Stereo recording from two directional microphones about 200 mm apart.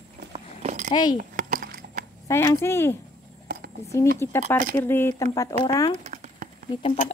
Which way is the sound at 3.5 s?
50° right (ahead or behind).